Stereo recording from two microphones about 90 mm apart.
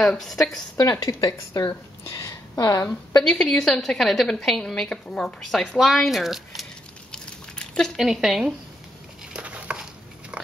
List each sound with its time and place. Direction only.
0.0 s a woman's voice: 5° left (ahead or behind)
0.7 s a woman's voice: 35° left (ahead or behind)
3.2 s a woman's voice: 10° left (ahead or behind)
5.8 s a sound: centre (ahead or behind)
9.3 s patter: 15° right (ahead or behind)
10.4 s dog: 15° right (ahead or behind)